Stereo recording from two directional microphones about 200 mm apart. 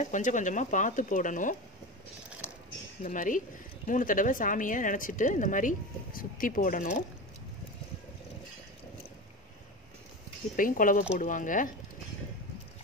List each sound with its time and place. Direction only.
0.0 s a woman's voice: 40° left (ahead or behind)
3.0 s a woman's voice: 40° left (ahead or behind)
10.5 s a woman's voice: 45° left (ahead or behind)